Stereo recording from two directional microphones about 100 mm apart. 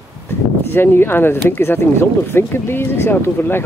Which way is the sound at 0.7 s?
20° left (ahead or behind).